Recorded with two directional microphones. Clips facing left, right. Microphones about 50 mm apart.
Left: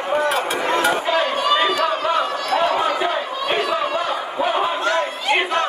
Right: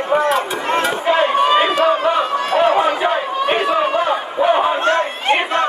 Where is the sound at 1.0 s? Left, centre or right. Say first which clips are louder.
Right 5 dB; right.